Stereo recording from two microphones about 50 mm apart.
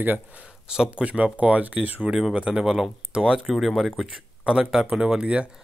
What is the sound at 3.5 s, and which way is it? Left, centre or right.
Speech, centre.